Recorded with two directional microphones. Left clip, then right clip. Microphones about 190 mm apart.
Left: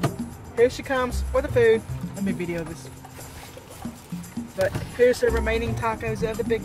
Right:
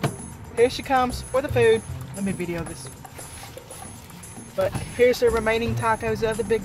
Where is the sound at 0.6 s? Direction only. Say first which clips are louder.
Right 1 dB; 30° right (ahead or behind).